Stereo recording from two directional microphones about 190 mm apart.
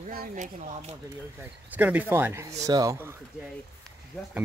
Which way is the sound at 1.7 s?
10° right (ahead or behind).